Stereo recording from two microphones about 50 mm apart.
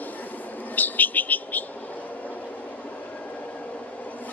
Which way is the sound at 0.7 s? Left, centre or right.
Left.